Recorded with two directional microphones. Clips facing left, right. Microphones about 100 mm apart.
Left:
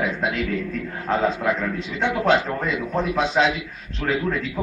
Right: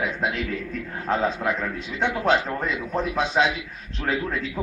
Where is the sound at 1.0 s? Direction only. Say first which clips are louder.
Left 2 dB; 5° right (ahead or behind).